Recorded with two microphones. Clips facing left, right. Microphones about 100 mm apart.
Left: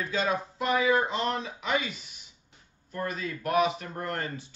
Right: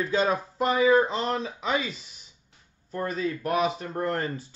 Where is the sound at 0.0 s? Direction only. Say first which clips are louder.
Right 4 dB; 35° right (ahead or behind).